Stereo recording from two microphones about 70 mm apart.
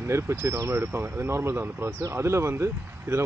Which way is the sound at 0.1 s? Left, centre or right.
Right.